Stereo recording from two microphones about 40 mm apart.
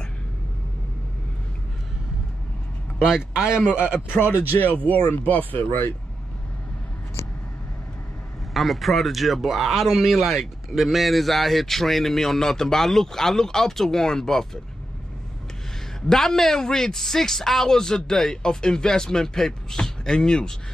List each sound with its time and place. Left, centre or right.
3.0 s speech: centre
4.1 s speech: left
4.6 s speech: left
8.5 s a man's voice: centre
16.1 s a man's voice: centre